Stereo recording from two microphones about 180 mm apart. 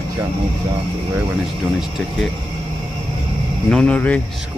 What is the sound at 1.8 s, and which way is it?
Speech, centre (ahead or behind).